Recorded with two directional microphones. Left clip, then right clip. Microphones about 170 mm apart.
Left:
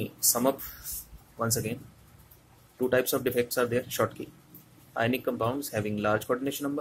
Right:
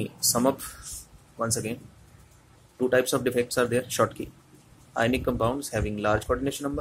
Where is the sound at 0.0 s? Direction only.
5° right (ahead or behind).